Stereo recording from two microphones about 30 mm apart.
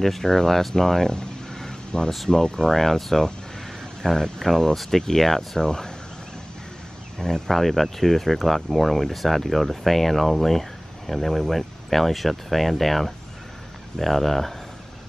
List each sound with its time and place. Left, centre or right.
0.0 s speech: centre
1.7 s a sound: left
2.2 s speech: left
2.7 s speech: centre
5.6 s speech: left
7.2 s speech: centre